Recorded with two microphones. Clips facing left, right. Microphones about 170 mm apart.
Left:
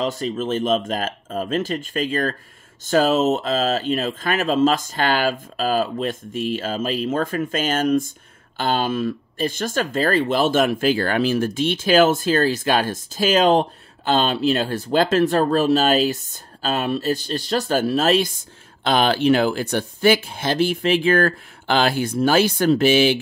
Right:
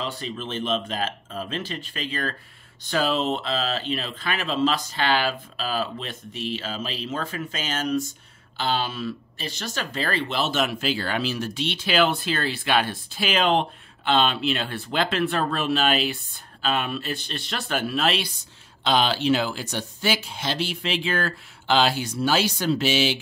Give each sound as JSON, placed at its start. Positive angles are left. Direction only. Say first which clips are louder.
{"t": 0.0, "sound": "speech", "louder": "left 8 dB", "side_deg": 40}